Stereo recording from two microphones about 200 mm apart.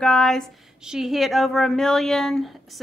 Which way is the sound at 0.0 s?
5° left (ahead or behind).